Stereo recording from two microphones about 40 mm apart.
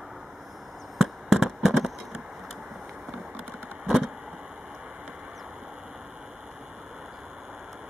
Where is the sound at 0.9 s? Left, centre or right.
Centre.